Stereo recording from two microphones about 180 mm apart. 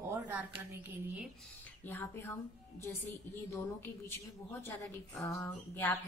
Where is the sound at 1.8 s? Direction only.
10° left (ahead or behind).